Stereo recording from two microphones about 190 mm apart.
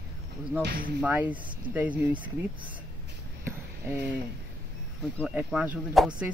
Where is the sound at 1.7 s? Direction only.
10° right (ahead or behind).